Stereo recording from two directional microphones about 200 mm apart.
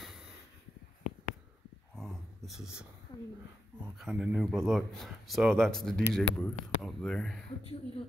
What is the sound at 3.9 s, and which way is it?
Speech, centre (ahead or behind).